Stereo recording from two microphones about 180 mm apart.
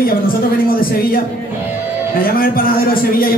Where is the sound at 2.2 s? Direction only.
55° left (ahead or behind).